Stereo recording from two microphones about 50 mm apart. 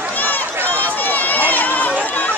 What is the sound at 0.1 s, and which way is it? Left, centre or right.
Run, left.